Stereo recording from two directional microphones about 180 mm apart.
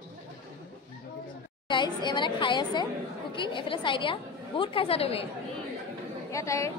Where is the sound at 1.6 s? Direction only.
25° left (ahead or behind).